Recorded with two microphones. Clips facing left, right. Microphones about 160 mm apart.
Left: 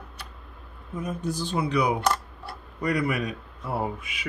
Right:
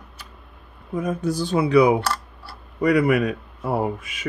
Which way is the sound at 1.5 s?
90° right.